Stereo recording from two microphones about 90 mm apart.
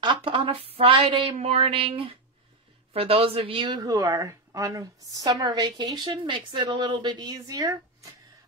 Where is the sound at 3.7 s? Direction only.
50° right (ahead or behind).